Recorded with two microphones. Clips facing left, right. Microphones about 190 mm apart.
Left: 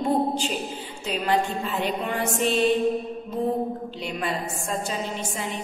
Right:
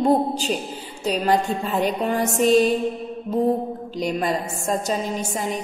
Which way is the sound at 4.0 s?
40° right (ahead or behind).